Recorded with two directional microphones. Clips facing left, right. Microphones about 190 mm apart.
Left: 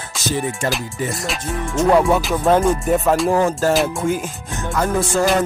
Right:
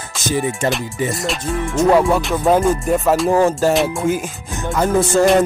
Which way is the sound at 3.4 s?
15° right (ahead or behind).